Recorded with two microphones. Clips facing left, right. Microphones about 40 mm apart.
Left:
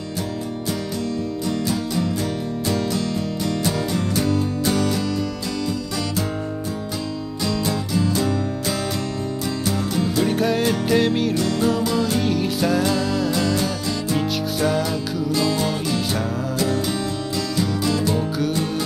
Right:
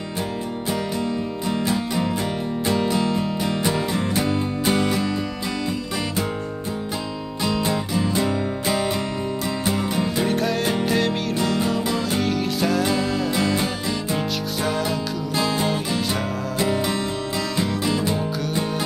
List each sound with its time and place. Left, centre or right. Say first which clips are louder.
1.7 s music: even; right
7.4 s music: right 1 dB; right
10.2 s music: left 3 dB; centre
11.3 s music: left 2 dB; centre
12.2 s music: left 1 dB; centre
12.8 s music: left 1 dB; centre
13.3 s music: left 1 dB; right
15.3 s music: even; right
16.5 s music: right 1 dB; right